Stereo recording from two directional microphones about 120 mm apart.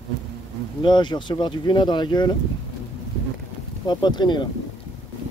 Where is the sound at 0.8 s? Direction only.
40° left (ahead or behind).